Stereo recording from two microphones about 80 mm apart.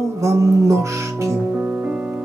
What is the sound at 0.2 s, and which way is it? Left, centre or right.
Music, right.